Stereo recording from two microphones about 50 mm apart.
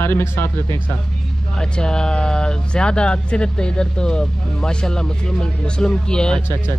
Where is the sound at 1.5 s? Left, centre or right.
Centre.